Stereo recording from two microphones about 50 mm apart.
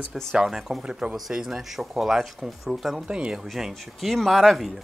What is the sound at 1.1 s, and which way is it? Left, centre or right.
Speech, centre.